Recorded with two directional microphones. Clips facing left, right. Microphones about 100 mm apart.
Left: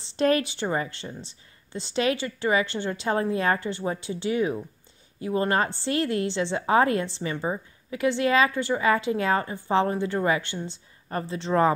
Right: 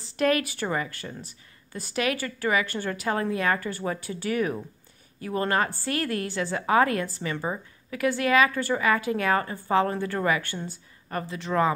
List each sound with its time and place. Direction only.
0.0 s a woman's voice: 30° left (ahead or behind)